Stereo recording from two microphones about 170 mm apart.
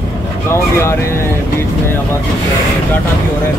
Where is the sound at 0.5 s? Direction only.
15° left (ahead or behind).